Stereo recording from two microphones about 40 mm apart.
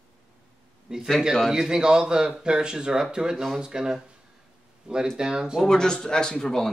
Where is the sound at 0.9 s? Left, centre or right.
Right.